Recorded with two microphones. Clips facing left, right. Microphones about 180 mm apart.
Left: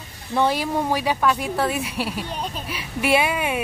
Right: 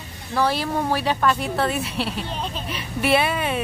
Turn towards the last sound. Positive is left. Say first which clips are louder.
# even
turn(degrees=10)  # may be behind; listen again after turning